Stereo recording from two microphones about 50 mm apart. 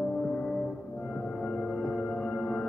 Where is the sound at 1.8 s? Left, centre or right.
Centre.